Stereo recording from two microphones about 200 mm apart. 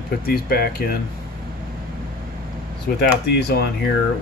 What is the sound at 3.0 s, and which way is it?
Speech, 55° left (ahead or behind).